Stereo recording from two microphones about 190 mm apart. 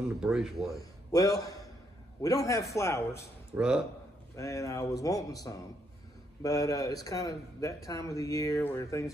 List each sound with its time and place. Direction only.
0.1 s speech: 5° right (ahead or behind)
0.7 s a man's voice: 20° left (ahead or behind)
3.5 s speech: 5° right (ahead or behind)
4.4 s a man's voice: 15° left (ahead or behind)